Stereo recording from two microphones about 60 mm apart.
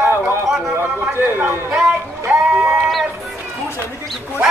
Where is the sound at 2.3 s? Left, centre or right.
Right.